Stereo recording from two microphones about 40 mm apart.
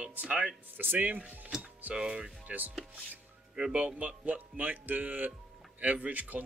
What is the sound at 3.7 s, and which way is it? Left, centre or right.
Speech, right.